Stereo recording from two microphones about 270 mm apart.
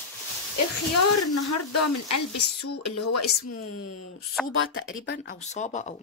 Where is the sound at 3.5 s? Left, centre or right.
Left.